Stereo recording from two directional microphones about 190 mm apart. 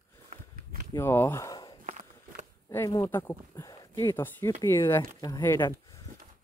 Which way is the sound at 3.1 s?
10° left (ahead or behind).